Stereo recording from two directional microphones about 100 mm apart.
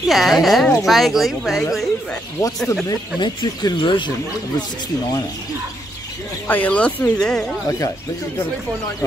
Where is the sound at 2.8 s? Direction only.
45° left (ahead or behind).